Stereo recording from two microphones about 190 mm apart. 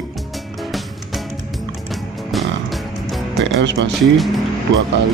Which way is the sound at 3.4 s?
70° right (ahead or behind).